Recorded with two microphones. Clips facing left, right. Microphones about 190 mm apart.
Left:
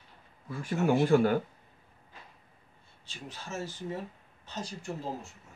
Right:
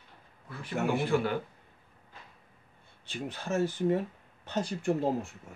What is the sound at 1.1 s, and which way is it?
Speech, 40° left (ahead or behind).